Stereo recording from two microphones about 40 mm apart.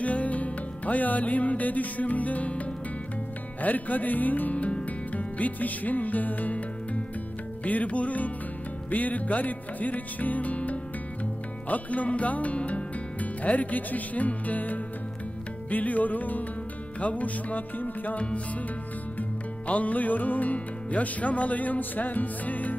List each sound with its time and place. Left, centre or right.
0.0 s music: left
3.6 s music: left
18.1 s music: left
19.7 s music: left